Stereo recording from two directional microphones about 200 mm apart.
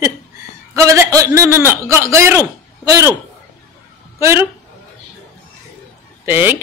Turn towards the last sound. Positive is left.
turn(degrees=-10)  # may be behind; listen again after turning